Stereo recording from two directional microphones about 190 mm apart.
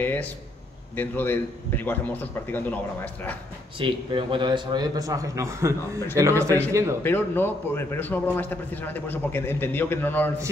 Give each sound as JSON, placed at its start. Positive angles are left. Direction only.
{"t": 0.0, "sound": "a man's voice", "side_deg": 10}
{"t": 3.8, "sound": "a man's voice", "side_deg": -25}
{"t": 7.0, "sound": "a man's voice", "side_deg": 10}